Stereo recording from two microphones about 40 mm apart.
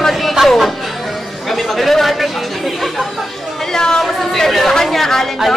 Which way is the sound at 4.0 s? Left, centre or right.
Centre.